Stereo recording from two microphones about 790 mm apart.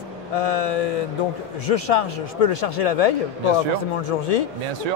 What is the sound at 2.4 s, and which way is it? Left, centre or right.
Speech, left.